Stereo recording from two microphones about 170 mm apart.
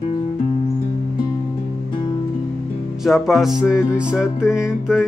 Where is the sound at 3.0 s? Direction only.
Centre (ahead or behind).